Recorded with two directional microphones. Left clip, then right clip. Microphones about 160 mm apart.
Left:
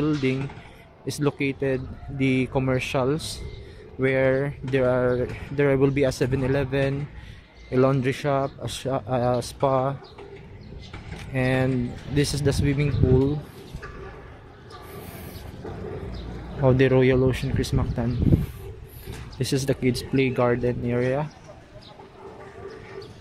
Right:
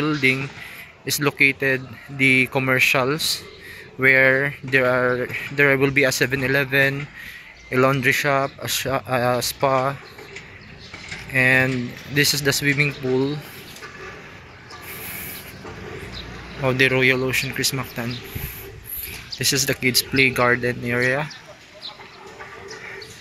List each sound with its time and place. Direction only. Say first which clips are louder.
0.0 s speech: right 5 dB; 10° left (ahead or behind)
11.3 s speech: right 7 dB; 10° left (ahead or behind)
16.6 s speech: right 2 dB; 35° left (ahead or behind)
19.3 s speech: right 5 dB; 25° left (ahead or behind); by 21.3 s 10° left (ahead or behind)